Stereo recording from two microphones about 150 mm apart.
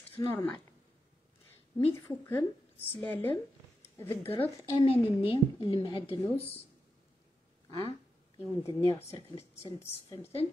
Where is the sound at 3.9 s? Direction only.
15° left (ahead or behind).